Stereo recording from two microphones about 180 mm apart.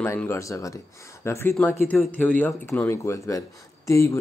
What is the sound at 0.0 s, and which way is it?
Speech, 15° left (ahead or behind).